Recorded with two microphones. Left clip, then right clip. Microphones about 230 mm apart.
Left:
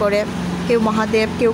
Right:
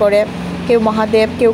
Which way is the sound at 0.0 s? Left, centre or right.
Centre.